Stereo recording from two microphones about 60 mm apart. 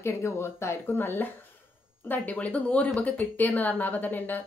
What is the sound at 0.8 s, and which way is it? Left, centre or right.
A woman's voice, left.